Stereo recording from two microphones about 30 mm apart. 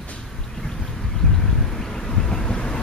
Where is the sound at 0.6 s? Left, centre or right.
Centre.